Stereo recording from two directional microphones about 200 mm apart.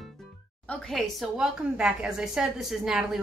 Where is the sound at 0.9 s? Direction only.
Centre (ahead or behind).